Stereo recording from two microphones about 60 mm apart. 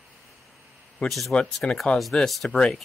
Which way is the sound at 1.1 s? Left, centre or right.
Centre.